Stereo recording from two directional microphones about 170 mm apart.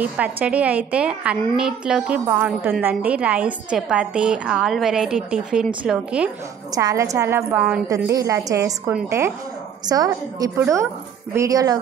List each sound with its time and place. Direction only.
0.0 s a woman's voice: 10° right (ahead or behind)
6.7 s a woman's voice: 20° right (ahead or behind)
7.9 s a woman's voice: 20° right (ahead or behind)